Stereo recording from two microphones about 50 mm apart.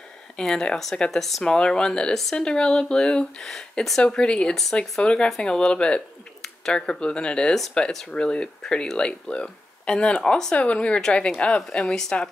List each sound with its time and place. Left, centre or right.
0.4 s a woman's voice: centre
4.2 s a woman's voice: centre